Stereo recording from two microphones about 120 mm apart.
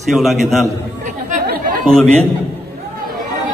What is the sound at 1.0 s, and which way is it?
Chatter, 90° right.